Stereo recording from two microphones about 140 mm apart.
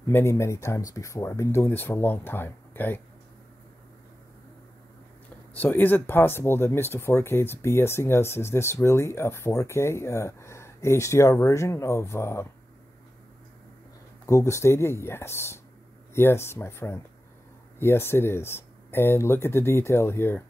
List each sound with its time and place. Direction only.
0.0 s speech: 20° left (ahead or behind)
5.5 s speech: 15° left (ahead or behind)
14.2 s speech: 20° left (ahead or behind)